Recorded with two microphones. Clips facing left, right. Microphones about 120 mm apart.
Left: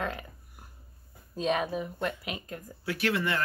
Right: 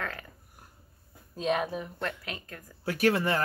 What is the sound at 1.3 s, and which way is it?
A woman's voice, centre (ahead or behind).